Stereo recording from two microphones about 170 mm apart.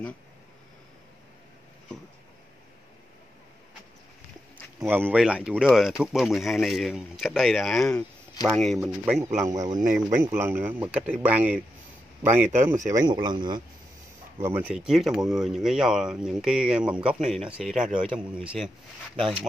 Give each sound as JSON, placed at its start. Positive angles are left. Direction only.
{"t": 4.7, "sound": "speech", "side_deg": -10}
{"t": 9.4, "sound": "a man's voice", "side_deg": -20}
{"t": 14.4, "sound": "speech", "side_deg": -10}